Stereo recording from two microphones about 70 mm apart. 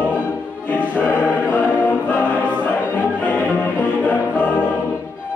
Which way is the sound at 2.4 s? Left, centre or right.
Left.